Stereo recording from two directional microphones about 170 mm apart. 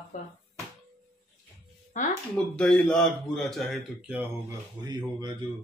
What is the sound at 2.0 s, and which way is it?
Speech, 45° left (ahead or behind).